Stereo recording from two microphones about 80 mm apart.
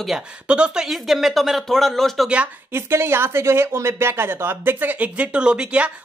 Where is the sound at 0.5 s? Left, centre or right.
Centre.